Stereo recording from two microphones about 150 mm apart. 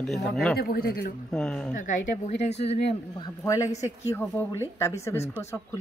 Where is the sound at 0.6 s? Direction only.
90° left.